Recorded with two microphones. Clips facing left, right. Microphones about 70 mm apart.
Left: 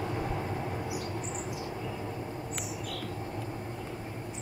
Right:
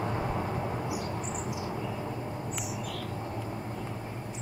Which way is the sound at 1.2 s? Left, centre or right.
Centre.